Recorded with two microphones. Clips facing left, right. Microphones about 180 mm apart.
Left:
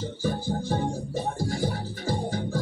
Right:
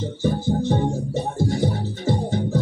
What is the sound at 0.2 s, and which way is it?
Music, 25° right (ahead or behind).